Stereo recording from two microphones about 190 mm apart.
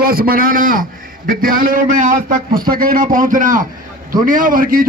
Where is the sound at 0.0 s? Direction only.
50° right (ahead or behind).